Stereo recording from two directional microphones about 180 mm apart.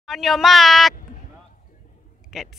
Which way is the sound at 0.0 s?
Centre (ahead or behind).